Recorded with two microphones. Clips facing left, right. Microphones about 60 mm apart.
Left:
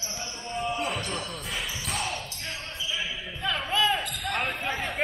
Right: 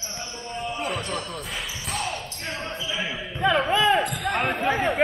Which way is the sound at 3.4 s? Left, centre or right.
Right.